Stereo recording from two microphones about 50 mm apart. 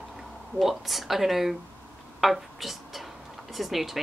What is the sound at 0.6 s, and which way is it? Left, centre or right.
A woman's voice, centre.